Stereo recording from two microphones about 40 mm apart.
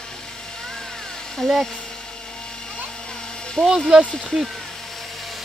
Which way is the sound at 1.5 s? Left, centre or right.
Centre.